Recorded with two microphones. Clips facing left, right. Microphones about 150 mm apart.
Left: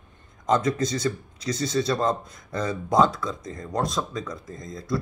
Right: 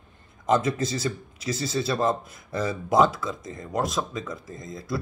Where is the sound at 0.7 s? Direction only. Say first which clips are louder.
Left 2 dB; 25° right (ahead or behind).